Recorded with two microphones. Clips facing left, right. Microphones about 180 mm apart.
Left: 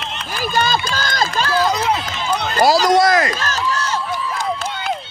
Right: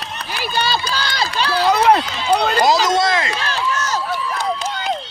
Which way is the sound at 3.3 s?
45° left (ahead or behind).